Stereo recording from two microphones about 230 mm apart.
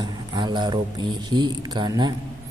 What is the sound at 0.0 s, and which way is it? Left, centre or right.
Speech, centre.